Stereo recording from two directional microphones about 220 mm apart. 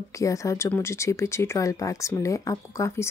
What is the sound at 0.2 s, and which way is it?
Speech, 15° left (ahead or behind).